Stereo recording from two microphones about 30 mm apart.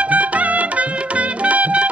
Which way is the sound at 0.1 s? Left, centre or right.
Right.